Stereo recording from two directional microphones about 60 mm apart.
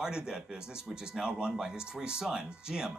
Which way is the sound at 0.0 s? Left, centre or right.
Centre.